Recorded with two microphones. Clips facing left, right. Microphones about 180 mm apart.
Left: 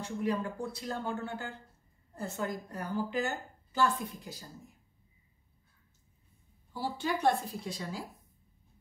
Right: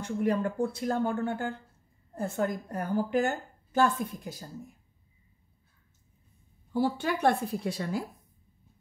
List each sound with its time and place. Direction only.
0.0 s a woman's voice: 55° right (ahead or behind)
6.7 s speech: 60° right (ahead or behind)